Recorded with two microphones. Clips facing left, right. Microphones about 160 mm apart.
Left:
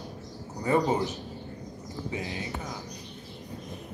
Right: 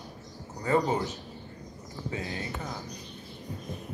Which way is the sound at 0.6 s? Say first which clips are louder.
Left 1 dB; 20° left (ahead or behind).